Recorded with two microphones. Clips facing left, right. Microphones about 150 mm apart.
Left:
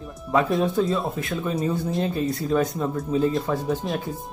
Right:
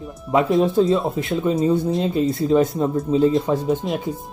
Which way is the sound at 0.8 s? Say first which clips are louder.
Right 5 dB; 25° right (ahead or behind).